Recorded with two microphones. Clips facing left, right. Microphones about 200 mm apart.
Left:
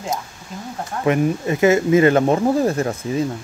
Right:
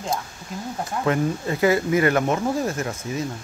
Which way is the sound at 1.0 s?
20° left (ahead or behind).